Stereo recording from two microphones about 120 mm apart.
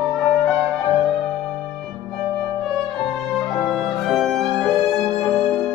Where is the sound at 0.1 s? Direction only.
5° left (ahead or behind).